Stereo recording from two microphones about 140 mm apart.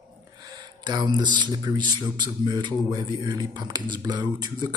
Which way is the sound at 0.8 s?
30° right (ahead or behind).